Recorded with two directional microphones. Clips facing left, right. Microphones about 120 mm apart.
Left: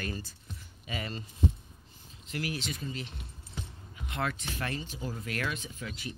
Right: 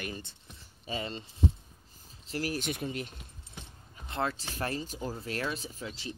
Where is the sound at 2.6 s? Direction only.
60° right (ahead or behind).